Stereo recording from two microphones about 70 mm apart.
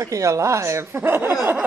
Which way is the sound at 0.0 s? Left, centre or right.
Right.